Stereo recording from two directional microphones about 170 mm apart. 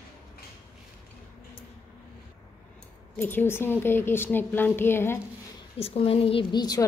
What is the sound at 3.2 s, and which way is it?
A woman's voice, 10° left (ahead or behind).